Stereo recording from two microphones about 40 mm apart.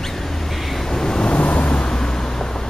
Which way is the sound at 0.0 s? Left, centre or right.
Centre.